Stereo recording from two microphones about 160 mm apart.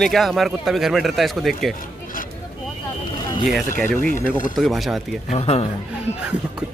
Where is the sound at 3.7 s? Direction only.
10° left (ahead or behind).